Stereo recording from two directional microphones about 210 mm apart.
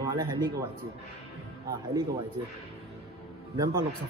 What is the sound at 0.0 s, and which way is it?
Speech, 20° right (ahead or behind).